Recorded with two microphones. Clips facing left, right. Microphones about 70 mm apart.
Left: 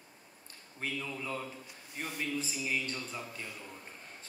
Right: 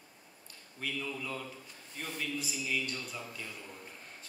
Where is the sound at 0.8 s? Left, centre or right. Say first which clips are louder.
Even; left.